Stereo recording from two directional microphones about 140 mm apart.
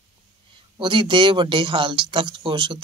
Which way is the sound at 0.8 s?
35° right (ahead or behind).